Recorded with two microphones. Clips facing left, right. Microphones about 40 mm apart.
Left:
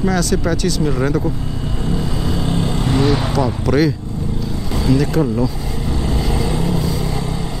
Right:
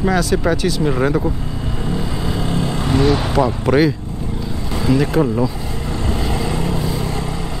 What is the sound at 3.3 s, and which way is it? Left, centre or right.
Speech, centre.